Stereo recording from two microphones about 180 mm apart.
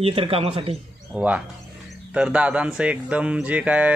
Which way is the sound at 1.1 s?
10° right (ahead or behind).